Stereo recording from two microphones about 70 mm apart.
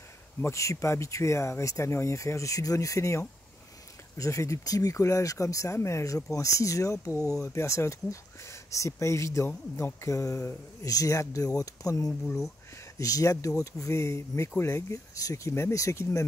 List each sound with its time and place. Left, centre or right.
0.4 s speech: left
10.8 s speech: left
15.1 s speech: left